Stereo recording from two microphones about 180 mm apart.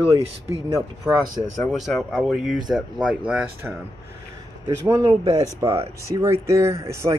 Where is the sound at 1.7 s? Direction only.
Centre (ahead or behind).